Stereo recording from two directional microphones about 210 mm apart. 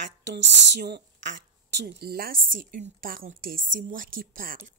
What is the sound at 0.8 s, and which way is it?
A woman's voice, 55° right (ahead or behind).